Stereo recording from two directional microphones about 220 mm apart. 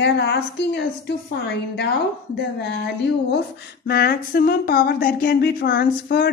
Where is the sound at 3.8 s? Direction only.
45° left (ahead or behind).